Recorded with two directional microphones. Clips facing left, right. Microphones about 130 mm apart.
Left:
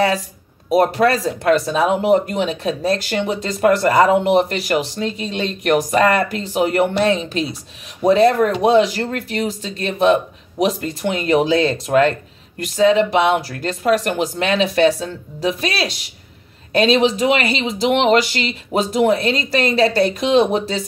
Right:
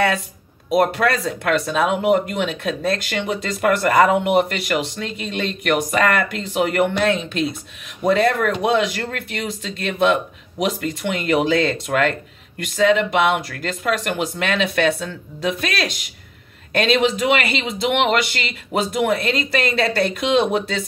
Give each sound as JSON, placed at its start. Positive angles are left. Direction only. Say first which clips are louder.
{"t": 0.7, "sound": "speech", "louder": "left 3 dB", "side_deg": 35}